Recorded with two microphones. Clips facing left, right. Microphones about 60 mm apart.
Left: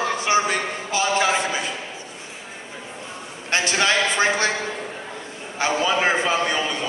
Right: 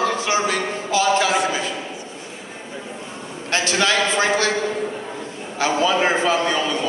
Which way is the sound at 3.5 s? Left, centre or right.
Centre.